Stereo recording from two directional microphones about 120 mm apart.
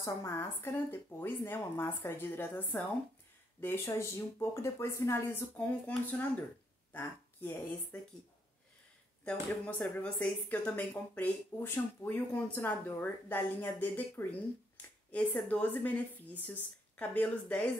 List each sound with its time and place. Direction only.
0.0 s speech: 25° left (ahead or behind)
9.2 s speech: 15° left (ahead or behind)